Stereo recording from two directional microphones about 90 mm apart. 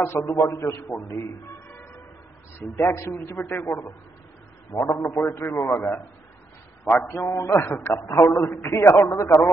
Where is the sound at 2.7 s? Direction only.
30° left (ahead or behind).